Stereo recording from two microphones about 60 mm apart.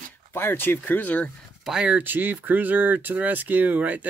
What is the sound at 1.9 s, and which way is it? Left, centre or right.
Speech, right.